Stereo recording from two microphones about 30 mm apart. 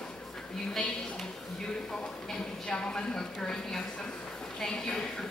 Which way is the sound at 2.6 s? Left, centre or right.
Left.